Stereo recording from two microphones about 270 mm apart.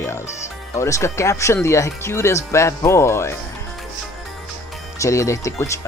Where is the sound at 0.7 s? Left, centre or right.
Centre.